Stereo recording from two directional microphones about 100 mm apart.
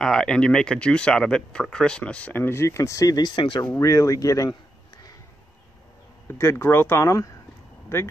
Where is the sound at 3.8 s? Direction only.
35° left (ahead or behind).